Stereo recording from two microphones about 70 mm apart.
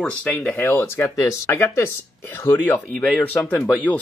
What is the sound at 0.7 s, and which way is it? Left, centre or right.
Speech, left.